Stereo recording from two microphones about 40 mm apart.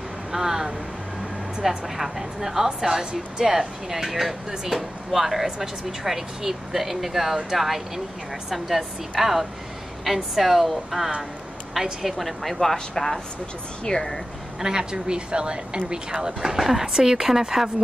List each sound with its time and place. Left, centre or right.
0.3 s a woman's voice: centre
14.6 s speech: centre
16.3 s a woman's voice: centre